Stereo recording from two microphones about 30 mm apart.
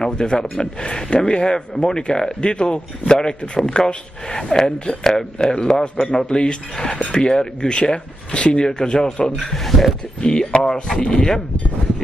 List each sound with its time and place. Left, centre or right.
0.0 s speech: left
8.6 s speech: left
9.4 s speech: centre
10.2 s speech: left
10.7 s speech: left